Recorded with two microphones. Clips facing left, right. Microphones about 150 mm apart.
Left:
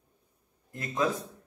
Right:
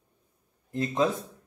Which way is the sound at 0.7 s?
25° right (ahead or behind).